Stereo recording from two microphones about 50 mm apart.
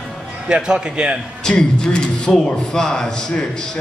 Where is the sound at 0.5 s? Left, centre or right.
Centre.